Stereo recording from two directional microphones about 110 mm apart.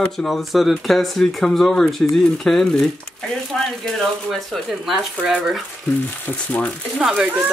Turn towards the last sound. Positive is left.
turn(degrees=-5)  # may be behind; listen again after turning